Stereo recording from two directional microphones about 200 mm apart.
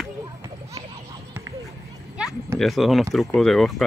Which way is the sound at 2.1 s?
5° right (ahead or behind).